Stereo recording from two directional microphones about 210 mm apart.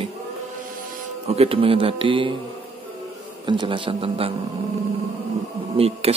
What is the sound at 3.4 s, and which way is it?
Speech, 20° right (ahead or behind).